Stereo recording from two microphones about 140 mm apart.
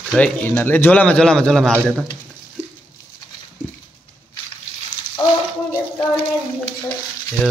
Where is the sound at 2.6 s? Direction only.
45° right (ahead or behind).